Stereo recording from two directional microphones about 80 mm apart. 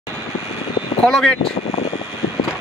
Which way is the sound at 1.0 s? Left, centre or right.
Centre.